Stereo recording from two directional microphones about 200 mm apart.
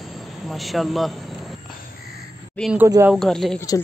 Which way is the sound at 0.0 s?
Centre (ahead or behind).